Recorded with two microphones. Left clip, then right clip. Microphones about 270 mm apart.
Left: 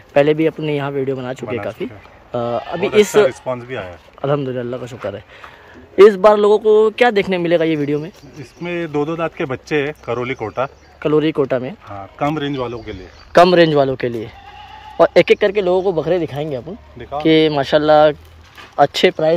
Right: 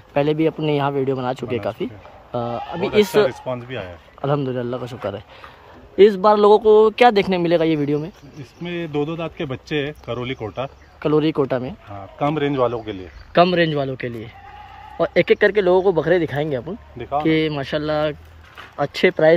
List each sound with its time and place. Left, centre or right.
0.1 s speech: centre
3.2 s speech: centre
5.9 s speech: centre
12.2 s a man's voice: centre
12.6 s speech: right
13.3 s a man's voice: centre
15.3 s speech: centre
17.3 s a man's voice: centre